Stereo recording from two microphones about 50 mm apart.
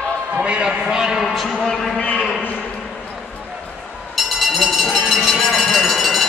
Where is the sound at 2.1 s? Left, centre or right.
Right.